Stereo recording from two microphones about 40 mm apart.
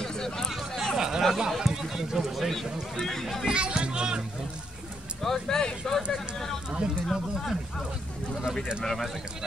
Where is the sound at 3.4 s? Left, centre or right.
Right.